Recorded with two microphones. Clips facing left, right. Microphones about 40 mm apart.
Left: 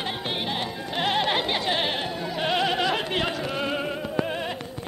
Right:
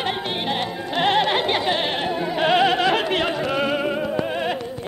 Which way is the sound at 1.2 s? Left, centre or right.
Centre.